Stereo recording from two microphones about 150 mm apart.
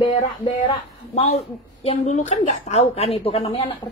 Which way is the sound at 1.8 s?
45° left (ahead or behind).